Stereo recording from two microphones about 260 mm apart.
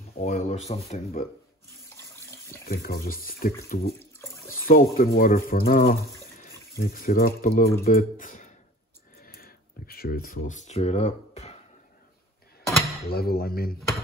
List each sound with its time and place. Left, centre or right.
0.1 s speech: left
2.0 s water: centre
2.6 s speech: left
4.0 s bathtub: centre
4.6 s speech: left
9.2 s a sound: left
10.5 s speech: left
13.1 s speech: left
13.7 s speech: centre